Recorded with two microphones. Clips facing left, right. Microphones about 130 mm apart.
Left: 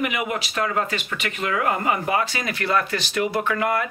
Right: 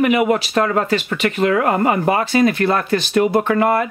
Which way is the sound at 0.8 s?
35° right (ahead or behind).